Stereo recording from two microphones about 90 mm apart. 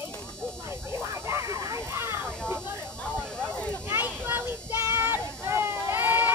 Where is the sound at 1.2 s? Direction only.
35° right (ahead or behind).